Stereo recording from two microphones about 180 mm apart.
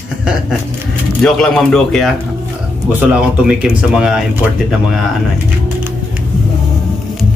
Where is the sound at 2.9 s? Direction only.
5° right (ahead or behind).